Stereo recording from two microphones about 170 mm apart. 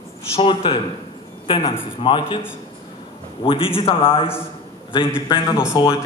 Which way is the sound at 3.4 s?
30° left (ahead or behind).